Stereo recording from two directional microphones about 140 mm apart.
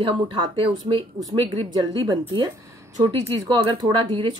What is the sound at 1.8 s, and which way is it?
Speech, 30° right (ahead or behind).